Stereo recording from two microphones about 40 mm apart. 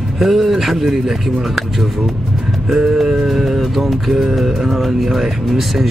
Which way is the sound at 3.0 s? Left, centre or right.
Centre.